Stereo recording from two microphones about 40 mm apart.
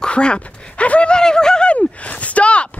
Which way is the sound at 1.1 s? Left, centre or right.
Centre.